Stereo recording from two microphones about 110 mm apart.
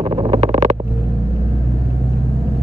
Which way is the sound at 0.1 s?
50° right (ahead or behind).